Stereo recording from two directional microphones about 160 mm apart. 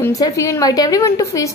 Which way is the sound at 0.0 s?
20° left (ahead or behind).